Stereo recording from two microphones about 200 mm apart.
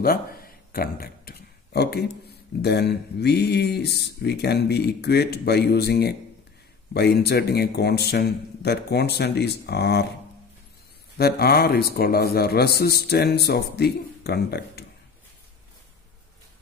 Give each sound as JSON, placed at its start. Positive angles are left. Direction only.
{"t": 0.0, "sound": "a sound", "side_deg": 45}
{"t": 2.6, "sound": "speech", "side_deg": 55}
{"t": 11.1, "sound": "speech", "side_deg": 50}